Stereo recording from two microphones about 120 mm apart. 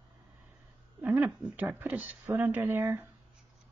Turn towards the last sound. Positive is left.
turn(degrees=-20)  # may be behind; listen again after turning